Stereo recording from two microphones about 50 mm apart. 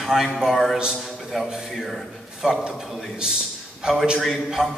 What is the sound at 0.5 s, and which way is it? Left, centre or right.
Speech, centre.